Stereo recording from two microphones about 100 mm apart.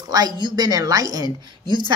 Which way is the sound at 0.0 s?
40° right (ahead or behind).